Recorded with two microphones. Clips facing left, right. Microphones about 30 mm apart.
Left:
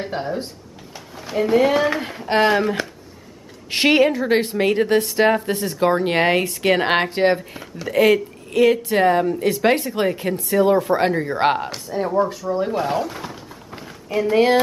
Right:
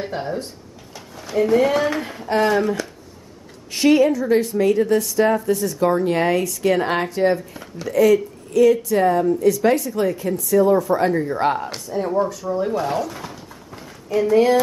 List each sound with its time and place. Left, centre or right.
0.9 s speech: centre
2.2 s speech: left
3.7 s a woman's voice: left
11.9 s speech: centre
12.3 s speech: left
12.6 s speech: centre
13.1 s a sound: centre
14.2 s speech: left